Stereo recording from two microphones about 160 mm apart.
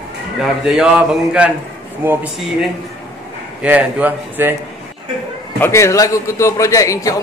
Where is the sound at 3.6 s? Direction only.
10° right (ahead or behind).